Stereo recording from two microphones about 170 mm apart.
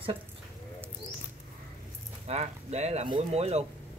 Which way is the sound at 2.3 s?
40° right (ahead or behind).